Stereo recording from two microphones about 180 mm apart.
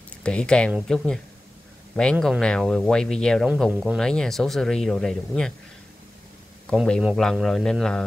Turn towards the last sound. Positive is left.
turn(degrees=5)  # may be behind; listen again after turning